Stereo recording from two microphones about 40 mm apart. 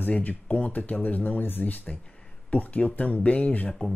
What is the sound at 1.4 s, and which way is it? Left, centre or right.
Speech, left.